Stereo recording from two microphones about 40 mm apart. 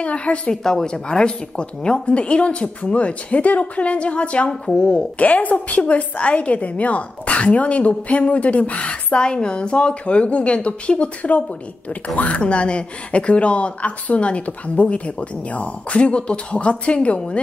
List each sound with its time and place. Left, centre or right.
0.0 s a woman's voice: left
0.5 s a woman's voice: centre; by 9.2 s left
9.2 s a woman's voice: left